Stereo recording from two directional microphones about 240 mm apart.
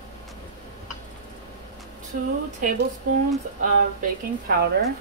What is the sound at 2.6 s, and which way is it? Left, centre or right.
Speech, right.